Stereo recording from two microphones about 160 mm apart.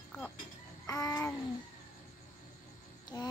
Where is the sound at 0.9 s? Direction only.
20° left (ahead or behind).